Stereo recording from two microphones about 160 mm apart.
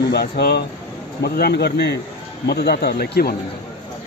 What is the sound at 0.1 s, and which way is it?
A man's voice, 90° left.